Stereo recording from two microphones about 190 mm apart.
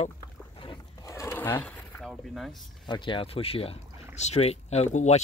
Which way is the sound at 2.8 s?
25° left (ahead or behind).